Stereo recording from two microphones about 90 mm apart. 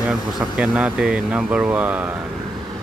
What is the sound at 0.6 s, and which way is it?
Speech, 10° right (ahead or behind).